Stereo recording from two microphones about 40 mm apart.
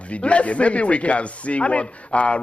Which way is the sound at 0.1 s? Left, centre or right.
Left.